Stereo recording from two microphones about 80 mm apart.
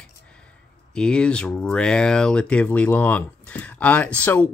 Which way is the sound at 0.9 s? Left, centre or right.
Centre.